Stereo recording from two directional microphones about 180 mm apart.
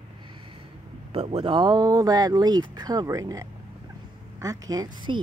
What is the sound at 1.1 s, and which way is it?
Speech, 35° right (ahead or behind).